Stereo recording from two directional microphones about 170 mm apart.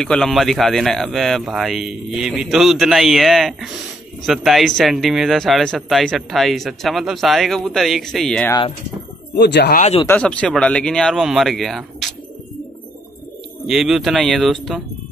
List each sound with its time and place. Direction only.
0.0 s speech: 5° left (ahead or behind)
8.5 s speech: 25° left (ahead or behind)
9.3 s speech: 80° left
9.8 s speech: 40° left (ahead or behind)
10.0 s speech: 10° left (ahead or behind)
13.7 s speech: centre (ahead or behind)